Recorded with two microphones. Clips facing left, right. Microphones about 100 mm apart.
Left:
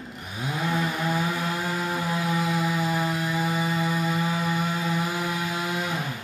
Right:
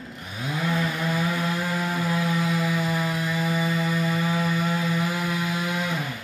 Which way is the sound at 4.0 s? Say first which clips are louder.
Right 1 dB; 15° left (ahead or behind).